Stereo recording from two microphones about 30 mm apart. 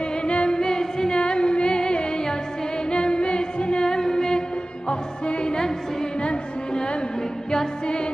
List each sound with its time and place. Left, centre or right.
0.2 s music: left
0.6 s music: left
1.1 s music: left
2.9 s singing: left
3.8 s music: left
4.8 s music: left
7.8 s music: left